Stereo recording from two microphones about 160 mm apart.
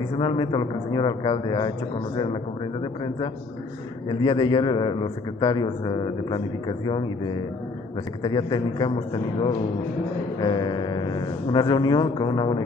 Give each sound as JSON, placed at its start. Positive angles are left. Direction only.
{"t": 0.2, "sound": "a man's voice", "side_deg": 30}
{"t": 4.2, "sound": "a man's voice", "side_deg": 30}
{"t": 8.2, "sound": "a man's voice", "side_deg": 25}